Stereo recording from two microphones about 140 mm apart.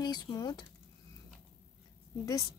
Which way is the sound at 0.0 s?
30° left (ahead or behind).